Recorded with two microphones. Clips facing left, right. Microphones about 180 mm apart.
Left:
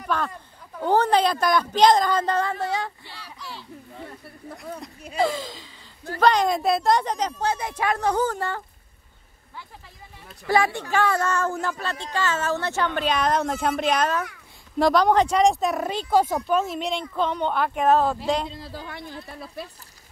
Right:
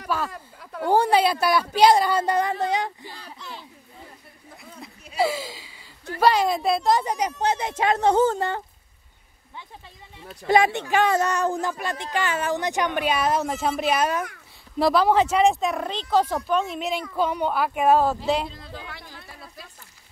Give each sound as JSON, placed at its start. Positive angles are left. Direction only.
{"t": 0.1, "sound": "a woman's voice", "side_deg": -5}
{"t": 3.3, "sound": "a sound", "side_deg": -20}
{"t": 4.8, "sound": "a sound", "side_deg": -5}
{"t": 6.1, "sound": "a woman's voice", "side_deg": -5}
{"t": 10.4, "sound": "speech", "side_deg": -20}
{"t": 18.9, "sound": "speech", "side_deg": 55}